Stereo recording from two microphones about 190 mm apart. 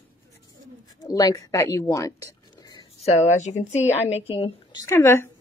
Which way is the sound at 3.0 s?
40° left (ahead or behind).